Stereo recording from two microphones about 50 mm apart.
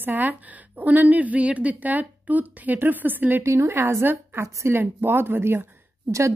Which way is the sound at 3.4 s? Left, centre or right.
Right.